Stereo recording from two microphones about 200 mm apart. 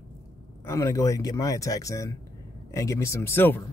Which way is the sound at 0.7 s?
15° left (ahead or behind).